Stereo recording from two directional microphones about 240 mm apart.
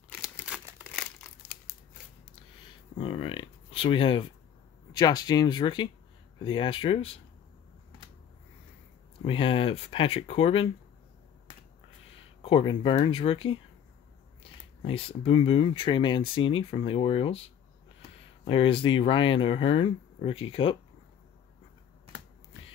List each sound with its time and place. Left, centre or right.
0.1 s a sound: centre
3.0 s speech: left
9.2 s speech: left
12.4 s speech: left
18.4 s speech: left